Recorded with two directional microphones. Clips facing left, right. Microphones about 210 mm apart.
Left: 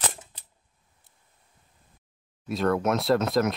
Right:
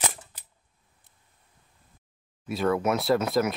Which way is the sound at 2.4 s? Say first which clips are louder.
Even; centre (ahead or behind).